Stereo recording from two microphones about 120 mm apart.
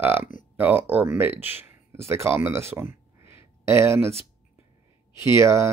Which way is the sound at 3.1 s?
20° right (ahead or behind).